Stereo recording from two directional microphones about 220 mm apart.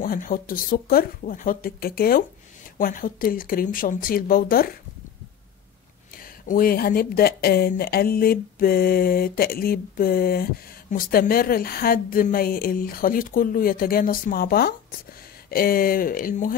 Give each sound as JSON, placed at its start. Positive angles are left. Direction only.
{"t": 0.0, "sound": "speech", "side_deg": 40}
{"t": 6.1, "sound": "speech", "side_deg": 40}